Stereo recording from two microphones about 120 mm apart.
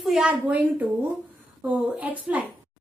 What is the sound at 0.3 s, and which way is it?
A woman's voice, 15° right (ahead or behind).